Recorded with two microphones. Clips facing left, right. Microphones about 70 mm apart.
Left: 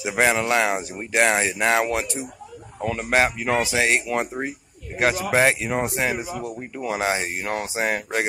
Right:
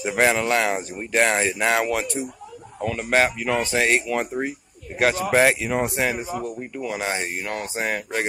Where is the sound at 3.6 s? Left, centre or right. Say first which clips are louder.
Right 1 dB; centre.